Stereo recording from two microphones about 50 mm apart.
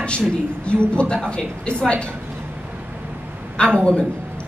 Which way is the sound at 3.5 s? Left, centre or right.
Centre.